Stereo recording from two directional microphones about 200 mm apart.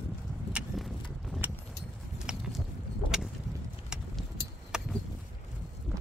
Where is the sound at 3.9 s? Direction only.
5° right (ahead or behind).